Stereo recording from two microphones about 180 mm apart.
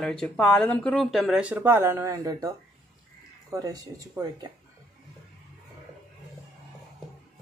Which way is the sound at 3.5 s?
20° right (ahead or behind).